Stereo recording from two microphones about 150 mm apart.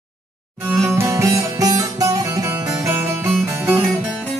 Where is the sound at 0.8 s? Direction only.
15° right (ahead or behind).